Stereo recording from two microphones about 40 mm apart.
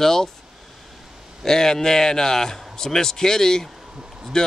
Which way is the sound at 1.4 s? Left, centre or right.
Centre.